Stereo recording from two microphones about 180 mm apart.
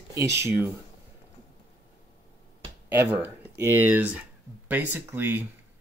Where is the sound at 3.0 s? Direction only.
10° right (ahead or behind).